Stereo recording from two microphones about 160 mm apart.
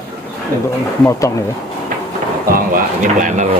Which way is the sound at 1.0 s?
20° left (ahead or behind).